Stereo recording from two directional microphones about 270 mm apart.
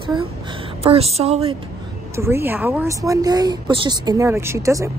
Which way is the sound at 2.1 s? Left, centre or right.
Centre.